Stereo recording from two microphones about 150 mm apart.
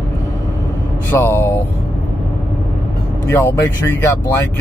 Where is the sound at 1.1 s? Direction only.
15° left (ahead or behind).